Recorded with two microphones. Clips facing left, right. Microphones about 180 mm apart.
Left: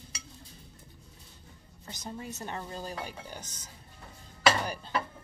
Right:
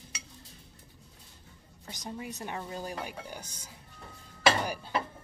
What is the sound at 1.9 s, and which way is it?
Speech, 15° right (ahead or behind).